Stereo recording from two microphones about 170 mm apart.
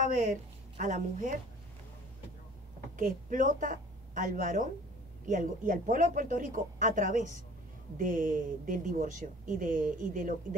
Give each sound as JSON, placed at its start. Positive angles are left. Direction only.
{"t": 0.0, "sound": "speech", "side_deg": -50}
{"t": 3.0, "sound": "a woman's voice", "side_deg": -50}